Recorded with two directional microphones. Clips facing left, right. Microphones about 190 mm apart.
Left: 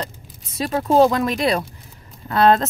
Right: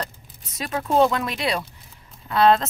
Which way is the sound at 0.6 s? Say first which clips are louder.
Left 4 dB; 35° left (ahead or behind).